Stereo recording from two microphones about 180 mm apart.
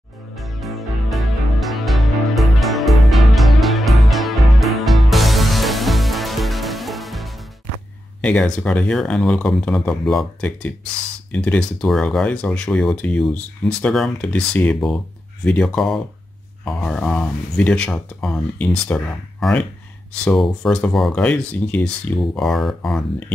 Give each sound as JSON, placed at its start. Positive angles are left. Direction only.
{"t": 0.4, "sound": "music", "side_deg": 0}
{"t": 8.2, "sound": "speech", "side_deg": 5}